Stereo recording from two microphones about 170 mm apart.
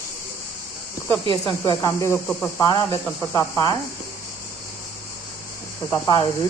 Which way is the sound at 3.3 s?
25° left (ahead or behind).